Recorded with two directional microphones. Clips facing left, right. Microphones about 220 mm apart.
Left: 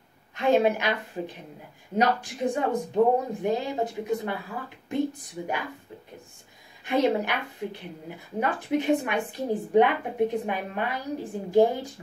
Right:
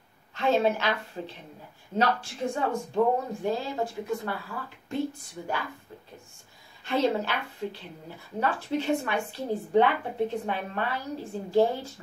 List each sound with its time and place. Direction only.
0.3 s a woman's voice: 15° left (ahead or behind)
6.8 s a woman's voice: 15° left (ahead or behind)